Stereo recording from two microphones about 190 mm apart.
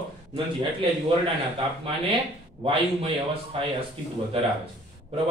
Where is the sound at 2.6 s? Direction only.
30° right (ahead or behind).